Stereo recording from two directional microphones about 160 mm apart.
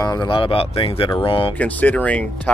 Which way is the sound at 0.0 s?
25° left (ahead or behind).